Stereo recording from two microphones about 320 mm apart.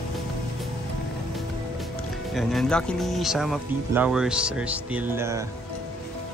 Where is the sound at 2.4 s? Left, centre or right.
Centre.